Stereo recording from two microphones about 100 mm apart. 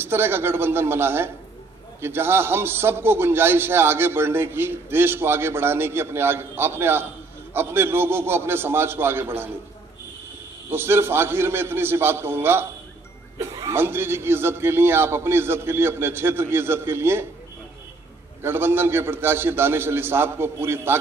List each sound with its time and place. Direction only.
0.0 s a man's voice: 25° right (ahead or behind)
10.7 s a man's voice: 25° right (ahead or behind)
13.7 s a man's voice: 25° right (ahead or behind)
18.4 s a man's voice: 25° right (ahead or behind)